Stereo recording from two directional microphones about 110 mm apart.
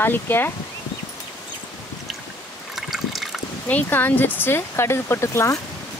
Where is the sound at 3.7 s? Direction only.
15° left (ahead or behind).